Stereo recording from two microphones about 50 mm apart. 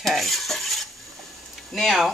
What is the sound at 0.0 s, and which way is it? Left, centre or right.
Cutlery, centre.